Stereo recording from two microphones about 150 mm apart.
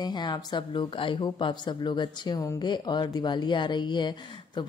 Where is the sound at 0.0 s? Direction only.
30° left (ahead or behind).